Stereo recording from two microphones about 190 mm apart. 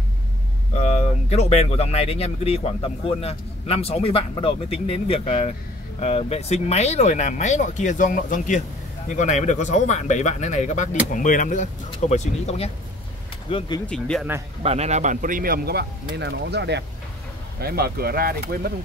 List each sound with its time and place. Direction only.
0.7 s speech: 35° left (ahead or behind)
13.8 s speech: 5° left (ahead or behind)
14.6 s speech: 35° right (ahead or behind); by 18.7 s 50° right (ahead or behind)